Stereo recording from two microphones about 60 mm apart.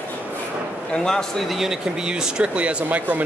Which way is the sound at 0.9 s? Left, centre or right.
Centre.